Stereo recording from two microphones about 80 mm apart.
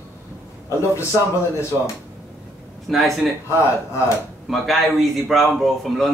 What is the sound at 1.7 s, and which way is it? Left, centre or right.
Speech, right.